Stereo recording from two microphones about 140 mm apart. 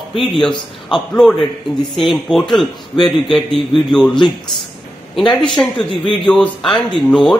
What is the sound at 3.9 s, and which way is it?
Speech, 5° left (ahead or behind).